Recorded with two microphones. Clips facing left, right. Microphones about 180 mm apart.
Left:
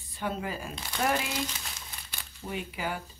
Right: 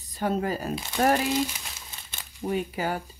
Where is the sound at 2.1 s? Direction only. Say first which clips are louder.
Right 7 dB; 20° right (ahead or behind).